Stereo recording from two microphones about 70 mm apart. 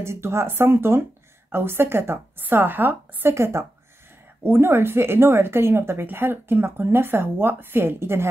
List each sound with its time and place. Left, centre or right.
0.0 s speech: right